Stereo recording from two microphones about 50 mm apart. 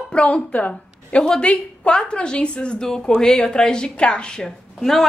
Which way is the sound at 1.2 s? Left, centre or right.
Centre.